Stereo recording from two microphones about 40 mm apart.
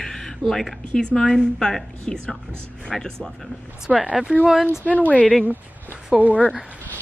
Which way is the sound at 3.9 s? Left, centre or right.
Right.